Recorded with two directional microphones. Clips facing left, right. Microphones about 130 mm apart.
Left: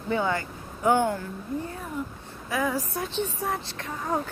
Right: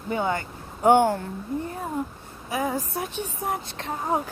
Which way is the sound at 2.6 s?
45° right (ahead or behind).